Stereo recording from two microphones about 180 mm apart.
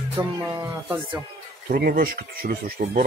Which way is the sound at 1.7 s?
55° right (ahead or behind).